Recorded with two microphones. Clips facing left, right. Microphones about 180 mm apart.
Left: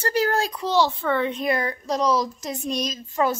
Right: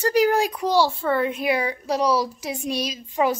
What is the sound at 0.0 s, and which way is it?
A woman's voice, 15° right (ahead or behind).